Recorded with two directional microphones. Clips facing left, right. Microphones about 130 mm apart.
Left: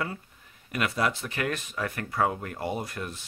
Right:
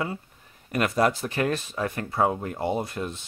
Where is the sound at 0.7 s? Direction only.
40° right (ahead or behind).